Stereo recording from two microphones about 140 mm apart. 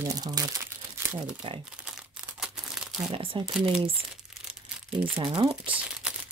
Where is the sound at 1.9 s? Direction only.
5° right (ahead or behind).